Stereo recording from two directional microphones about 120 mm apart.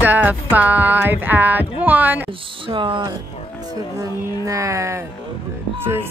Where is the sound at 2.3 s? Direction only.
45° right (ahead or behind).